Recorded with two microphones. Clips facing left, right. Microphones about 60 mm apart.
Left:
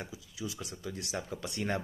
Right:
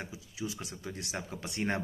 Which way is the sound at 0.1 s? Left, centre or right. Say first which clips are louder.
Right 2 dB; right.